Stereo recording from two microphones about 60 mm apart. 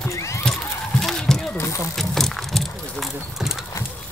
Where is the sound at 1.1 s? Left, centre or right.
Centre.